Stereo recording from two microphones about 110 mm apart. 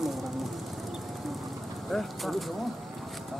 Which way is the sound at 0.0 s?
Centre (ahead or behind).